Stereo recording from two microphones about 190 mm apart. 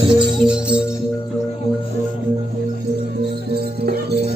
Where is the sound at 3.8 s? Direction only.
60° right (ahead or behind).